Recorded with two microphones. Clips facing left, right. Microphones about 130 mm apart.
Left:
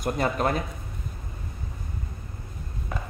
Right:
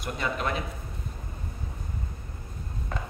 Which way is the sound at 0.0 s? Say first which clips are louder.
Left 5 dB; 45° left (ahead or behind).